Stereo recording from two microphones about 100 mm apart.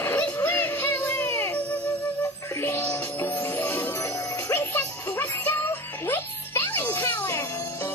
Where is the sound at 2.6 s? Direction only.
25° left (ahead or behind).